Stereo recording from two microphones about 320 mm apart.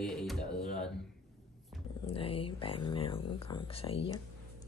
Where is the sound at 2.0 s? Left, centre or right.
Centre.